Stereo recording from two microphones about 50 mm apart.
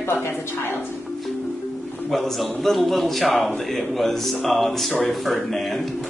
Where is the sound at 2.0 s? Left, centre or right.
Centre.